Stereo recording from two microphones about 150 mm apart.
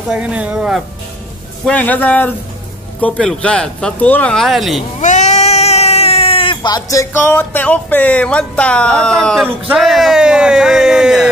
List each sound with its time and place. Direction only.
0.1 s speech: 5° right (ahead or behind)
1.7 s speech: 10° left (ahead or behind)
5.0 s speech: 50° left (ahead or behind); by 11.2 s 5° right (ahead or behind)